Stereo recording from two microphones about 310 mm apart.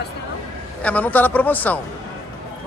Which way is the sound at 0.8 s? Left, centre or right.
Centre.